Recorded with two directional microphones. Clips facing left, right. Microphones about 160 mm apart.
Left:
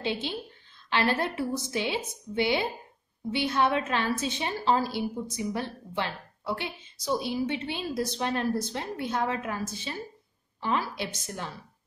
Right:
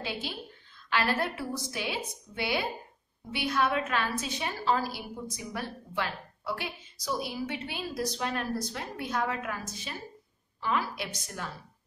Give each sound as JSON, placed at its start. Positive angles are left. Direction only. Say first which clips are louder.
{"t": 0.0, "sound": "a woman's voice", "louder": "left 5 dB", "side_deg": 25}